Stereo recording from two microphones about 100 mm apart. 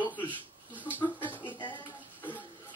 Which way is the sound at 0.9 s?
20° left (ahead or behind).